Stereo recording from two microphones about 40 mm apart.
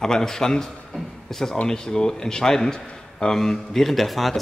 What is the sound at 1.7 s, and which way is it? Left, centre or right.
A man's voice, centre.